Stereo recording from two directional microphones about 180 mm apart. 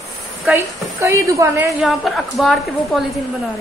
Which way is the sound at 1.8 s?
Centre (ahead or behind).